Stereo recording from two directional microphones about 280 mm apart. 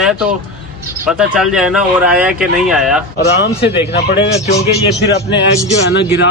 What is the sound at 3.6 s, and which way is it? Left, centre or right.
Speech, left.